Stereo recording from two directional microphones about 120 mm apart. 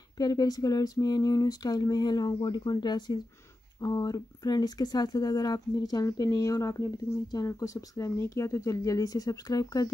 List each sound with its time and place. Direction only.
0.2 s speech: 30° left (ahead or behind)